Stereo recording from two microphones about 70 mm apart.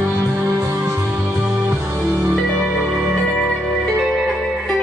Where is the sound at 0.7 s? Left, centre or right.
Right.